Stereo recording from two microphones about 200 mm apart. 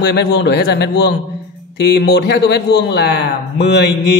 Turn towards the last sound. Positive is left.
turn(degrees=55)  # may be behind; listen again after turning